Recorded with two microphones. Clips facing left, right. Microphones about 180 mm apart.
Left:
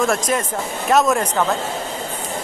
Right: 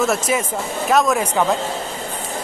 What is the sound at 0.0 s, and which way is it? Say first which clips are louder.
Speech: even; 5° right (ahead or behind).